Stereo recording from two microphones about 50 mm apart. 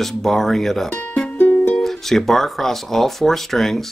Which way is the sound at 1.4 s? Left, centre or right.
Left.